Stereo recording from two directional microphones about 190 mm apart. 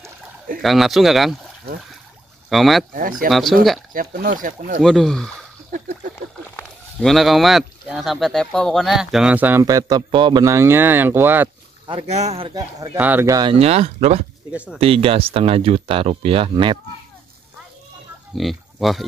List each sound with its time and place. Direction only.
0.6 s speech: centre (ahead or behind)
2.5 s speech: centre (ahead or behind)
2.9 s speech: 45° right (ahead or behind)
3.3 s speech: centre (ahead or behind)
3.9 s speech: 50° right (ahead or behind)
4.8 s speech: centre (ahead or behind)
6.5 s speech: 5° left (ahead or behind)
11.9 s speech: 35° right (ahead or behind)
12.9 s speech: 10° right (ahead or behind)
13.5 s speech: 30° right (ahead or behind)
14.5 s speech: 5° right (ahead or behind)
14.8 s speech: 30° right (ahead or behind)
18.3 s speech: centre (ahead or behind)